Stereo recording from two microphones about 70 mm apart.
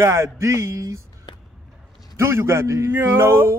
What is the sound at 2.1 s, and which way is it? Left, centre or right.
Speech, right.